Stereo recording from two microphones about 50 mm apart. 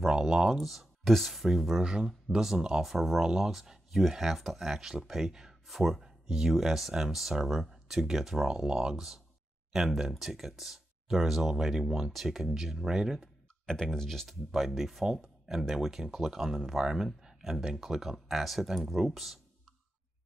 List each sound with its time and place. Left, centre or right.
0.0 s speech: centre
1.8 s speech: centre
13.7 s speech: centre
14.2 s speech: centre